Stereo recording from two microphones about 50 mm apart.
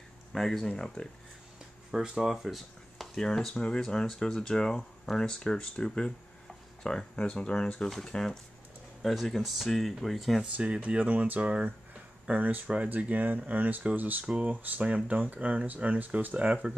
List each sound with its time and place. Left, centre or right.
0.3 s speech: centre
1.9 s speech: centre
3.2 s speech: centre
10.5 s speech: right
11.0 s speech: right
14.2 s speech: right
16.6 s speech: right